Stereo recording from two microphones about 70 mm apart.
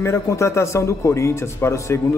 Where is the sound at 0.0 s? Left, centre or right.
Left.